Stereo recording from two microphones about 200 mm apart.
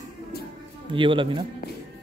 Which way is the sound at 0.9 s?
25° right (ahead or behind).